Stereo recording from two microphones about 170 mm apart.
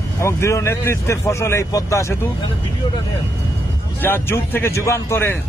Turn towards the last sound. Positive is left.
turn(degrees=15)  # may be behind; listen again after turning